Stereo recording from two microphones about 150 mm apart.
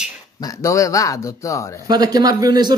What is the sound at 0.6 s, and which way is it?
Speech, 20° left (ahead or behind).